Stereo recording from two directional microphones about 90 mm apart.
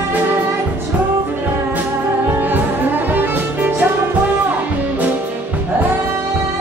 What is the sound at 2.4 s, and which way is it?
Music, 20° right (ahead or behind).